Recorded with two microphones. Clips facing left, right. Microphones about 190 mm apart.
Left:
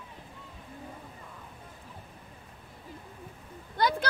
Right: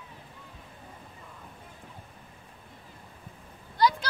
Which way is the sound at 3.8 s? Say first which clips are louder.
Right 3 dB; 55° left (ahead or behind).